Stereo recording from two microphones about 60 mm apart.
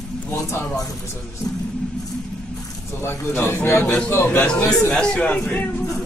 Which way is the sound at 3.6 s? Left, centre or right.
Left.